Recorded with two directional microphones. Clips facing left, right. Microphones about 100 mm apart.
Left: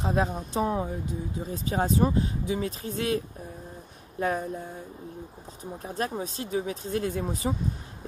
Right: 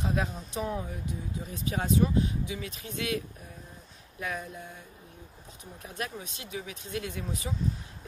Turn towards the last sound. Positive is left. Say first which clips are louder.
# left 8 dB
turn(degrees=40)  # may be behind; listen again after turning